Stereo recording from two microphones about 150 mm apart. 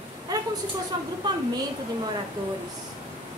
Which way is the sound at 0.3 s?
25° right (ahead or behind).